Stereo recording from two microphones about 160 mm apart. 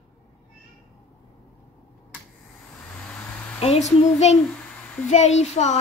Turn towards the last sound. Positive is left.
turn(degrees=45)  # may be behind; listen again after turning